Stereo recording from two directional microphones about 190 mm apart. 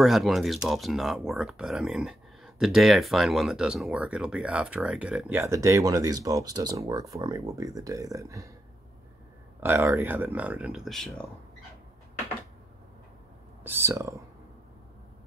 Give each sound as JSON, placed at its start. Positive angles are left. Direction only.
{"t": 0.0, "sound": "speech", "side_deg": 0}
{"t": 9.6, "sound": "speech", "side_deg": -10}
{"t": 13.7, "sound": "speech", "side_deg": -15}